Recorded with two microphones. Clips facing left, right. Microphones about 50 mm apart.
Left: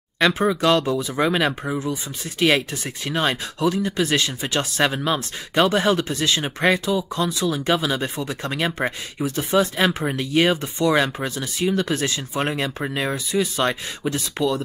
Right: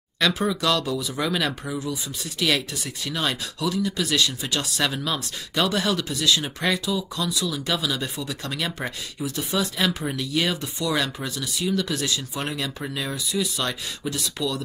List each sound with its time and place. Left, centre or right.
0.2 s speech: left